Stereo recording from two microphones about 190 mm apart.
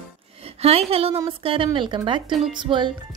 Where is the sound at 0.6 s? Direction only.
35° right (ahead or behind).